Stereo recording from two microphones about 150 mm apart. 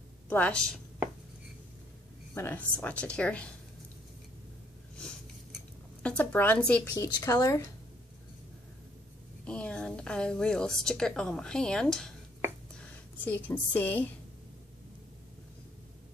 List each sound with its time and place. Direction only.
0.3 s speech: 10° left (ahead or behind)
2.3 s speech: 10° left (ahead or behind)
6.0 s a woman's voice: 10° left (ahead or behind)
9.4 s a woman's voice: 5° left (ahead or behind)